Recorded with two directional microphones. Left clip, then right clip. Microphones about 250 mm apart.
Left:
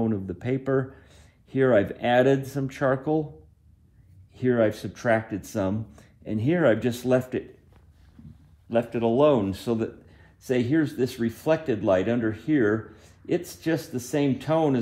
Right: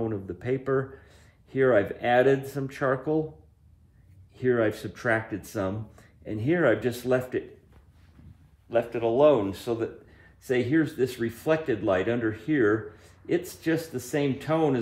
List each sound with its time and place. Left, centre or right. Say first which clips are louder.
0.0 s speech: left 2 dB; centre
4.4 s speech: left 2 dB; centre
8.6 s speech: left 1 dB; left